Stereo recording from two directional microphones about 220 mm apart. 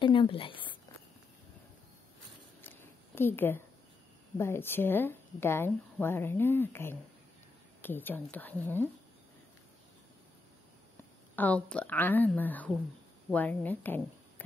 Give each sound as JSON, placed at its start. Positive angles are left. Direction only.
{"t": 0.0, "sound": "speech", "side_deg": 20}
{"t": 2.6, "sound": "a sound", "side_deg": 10}
{"t": 4.4, "sound": "speech", "side_deg": 10}
{"t": 11.3, "sound": "speech", "side_deg": 5}